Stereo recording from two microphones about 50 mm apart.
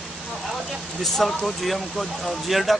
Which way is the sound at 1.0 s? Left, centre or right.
Centre.